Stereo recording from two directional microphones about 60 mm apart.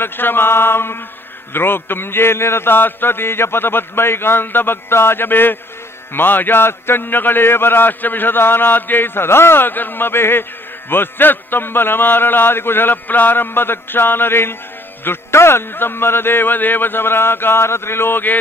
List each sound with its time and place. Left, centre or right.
0.0 s a man's voice: left